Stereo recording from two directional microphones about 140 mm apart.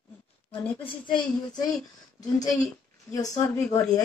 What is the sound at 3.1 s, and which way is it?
Speech, 25° left (ahead or behind).